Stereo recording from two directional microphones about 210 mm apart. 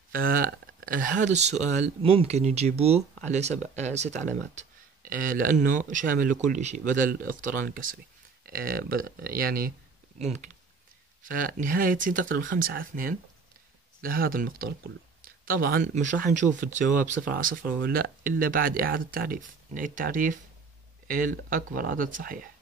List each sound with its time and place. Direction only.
0.1 s speech: 45° right (ahead or behind)
11.2 s speech: 40° right (ahead or behind)